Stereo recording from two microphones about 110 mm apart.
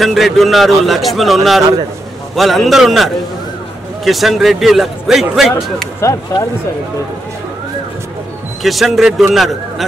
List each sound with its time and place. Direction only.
0.0 s a man's voice: centre (ahead or behind)
5.9 s speech: 25° left (ahead or behind)
8.6 s a man's voice: centre (ahead or behind)